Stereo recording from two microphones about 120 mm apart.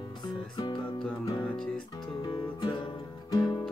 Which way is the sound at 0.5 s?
40° left (ahead or behind).